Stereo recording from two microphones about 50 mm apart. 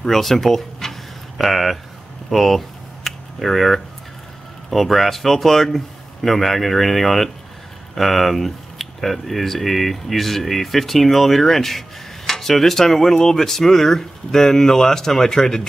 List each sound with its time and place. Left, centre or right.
0.0 s speech: centre
2.2 s a sound: centre
4.6 s speech: centre